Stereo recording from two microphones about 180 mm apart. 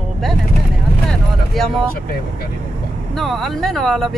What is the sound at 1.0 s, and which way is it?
Speech, centre (ahead or behind).